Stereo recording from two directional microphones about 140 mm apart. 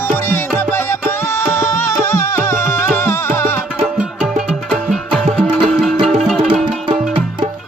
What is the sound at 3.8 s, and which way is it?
Music, 5° right (ahead or behind).